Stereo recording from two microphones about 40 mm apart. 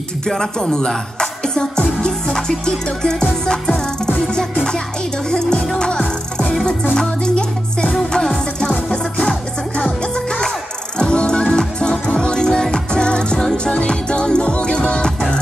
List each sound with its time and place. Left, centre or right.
0.4 s music: centre
6.9 s music: centre